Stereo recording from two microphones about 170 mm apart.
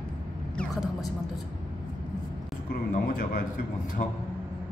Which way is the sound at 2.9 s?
50° left (ahead or behind).